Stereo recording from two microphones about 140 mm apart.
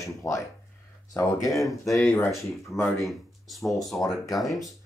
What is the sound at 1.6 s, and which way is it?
Speech, centre (ahead or behind).